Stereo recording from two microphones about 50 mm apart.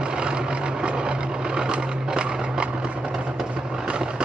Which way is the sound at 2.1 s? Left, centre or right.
Centre.